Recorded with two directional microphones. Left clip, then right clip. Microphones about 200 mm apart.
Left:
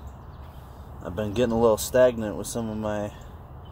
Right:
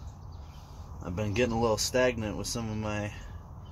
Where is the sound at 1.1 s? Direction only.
10° left (ahead or behind).